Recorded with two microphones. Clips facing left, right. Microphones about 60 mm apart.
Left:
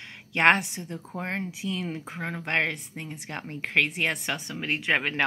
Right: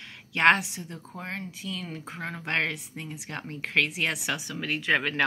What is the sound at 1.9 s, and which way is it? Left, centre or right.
Speech, centre.